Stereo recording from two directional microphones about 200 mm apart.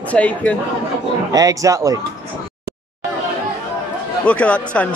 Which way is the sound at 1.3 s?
15° right (ahead or behind).